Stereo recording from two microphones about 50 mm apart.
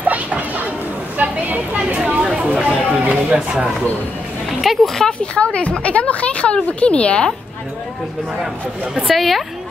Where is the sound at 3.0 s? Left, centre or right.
Right.